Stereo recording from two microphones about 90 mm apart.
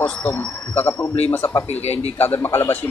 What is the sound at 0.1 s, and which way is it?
A man's voice, 15° left (ahead or behind).